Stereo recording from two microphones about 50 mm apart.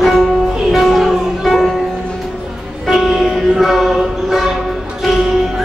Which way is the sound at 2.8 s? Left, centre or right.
Centre.